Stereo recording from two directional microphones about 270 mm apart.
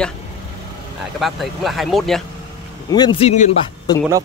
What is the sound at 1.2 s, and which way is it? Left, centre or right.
Speech, centre.